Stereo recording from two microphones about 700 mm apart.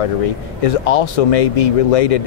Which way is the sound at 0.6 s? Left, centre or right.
Left.